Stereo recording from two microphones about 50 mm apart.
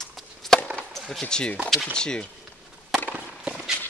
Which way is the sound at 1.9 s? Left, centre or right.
Centre.